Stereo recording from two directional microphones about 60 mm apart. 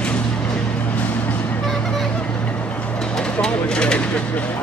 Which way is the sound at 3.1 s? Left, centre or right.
Centre.